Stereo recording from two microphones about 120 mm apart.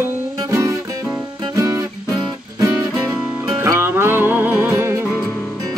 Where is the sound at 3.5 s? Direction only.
20° right (ahead or behind).